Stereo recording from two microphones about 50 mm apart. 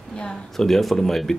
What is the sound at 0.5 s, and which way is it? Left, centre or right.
Speech, centre.